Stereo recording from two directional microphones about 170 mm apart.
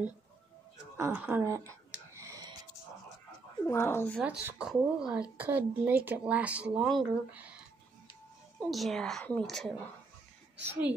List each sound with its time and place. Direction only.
0.9 s speech: 15° right (ahead or behind)
2.1 s a sound: 20° right (ahead or behind)
3.6 s speech: 15° left (ahead or behind)
4.2 s speech: 5° right (ahead or behind)
8.5 s a woman's voice: centre (ahead or behind)